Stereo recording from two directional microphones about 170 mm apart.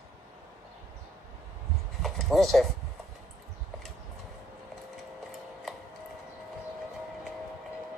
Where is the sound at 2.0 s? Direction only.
Centre (ahead or behind).